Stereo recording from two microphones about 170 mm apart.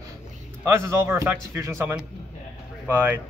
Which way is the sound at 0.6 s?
15° right (ahead or behind).